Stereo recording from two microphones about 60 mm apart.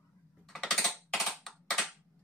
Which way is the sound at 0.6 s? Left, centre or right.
Centre.